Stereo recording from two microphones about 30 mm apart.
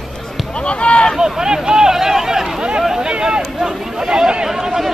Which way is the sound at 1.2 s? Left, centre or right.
Right.